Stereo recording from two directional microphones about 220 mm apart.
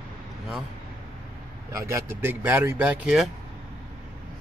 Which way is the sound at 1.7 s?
15° right (ahead or behind).